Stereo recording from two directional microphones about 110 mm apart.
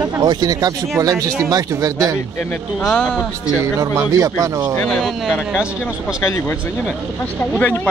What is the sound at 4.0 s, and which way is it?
Speech, 30° right (ahead or behind).